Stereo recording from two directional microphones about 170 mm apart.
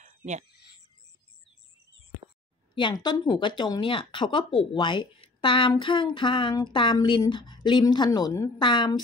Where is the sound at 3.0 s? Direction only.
25° left (ahead or behind).